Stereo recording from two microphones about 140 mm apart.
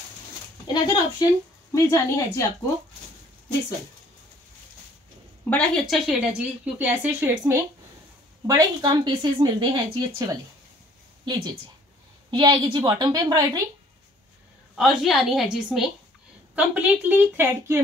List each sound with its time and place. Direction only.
1.2 s speech: 25° left (ahead or behind)
5.5 s speech: centre (ahead or behind); by 7.6 s 15° right (ahead or behind)
8.5 s speech: 30° right (ahead or behind)
14.8 s a woman's voice: centre (ahead or behind)